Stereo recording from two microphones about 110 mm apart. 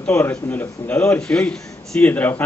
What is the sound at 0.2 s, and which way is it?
A man's voice, 20° left (ahead or behind).